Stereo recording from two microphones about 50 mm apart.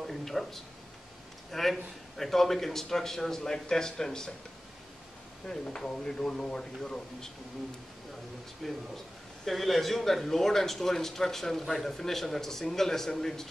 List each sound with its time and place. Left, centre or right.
0.0 s a man's voice: centre
5.9 s a man's voice: centre
8.6 s a man's voice: centre